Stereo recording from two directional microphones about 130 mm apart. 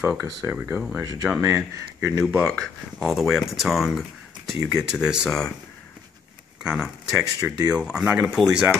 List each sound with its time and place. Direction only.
0.2 s speech: 15° right (ahead or behind)
0.9 s speech: 25° right (ahead or behind)
2.5 s speech: centre (ahead or behind)
6.6 s speech: 5° right (ahead or behind)